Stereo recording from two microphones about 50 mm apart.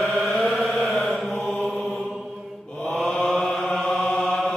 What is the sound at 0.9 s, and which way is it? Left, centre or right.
Mantra, centre.